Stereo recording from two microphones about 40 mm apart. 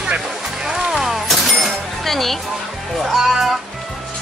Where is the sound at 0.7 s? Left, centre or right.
Centre.